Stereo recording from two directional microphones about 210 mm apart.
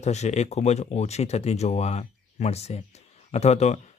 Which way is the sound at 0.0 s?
30° left (ahead or behind).